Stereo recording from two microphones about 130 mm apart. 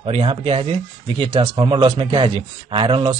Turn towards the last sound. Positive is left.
turn(degrees=-40)  # may be behind; listen again after turning